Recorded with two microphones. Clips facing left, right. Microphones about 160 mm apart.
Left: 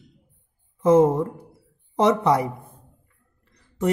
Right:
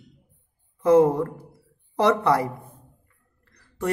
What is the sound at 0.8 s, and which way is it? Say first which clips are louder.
A woman's voice: left 1 dB; 20° left (ahead or behind).